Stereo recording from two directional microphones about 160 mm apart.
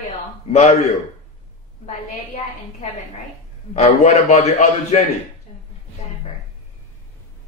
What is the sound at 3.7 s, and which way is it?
A man's voice, 45° left (ahead or behind).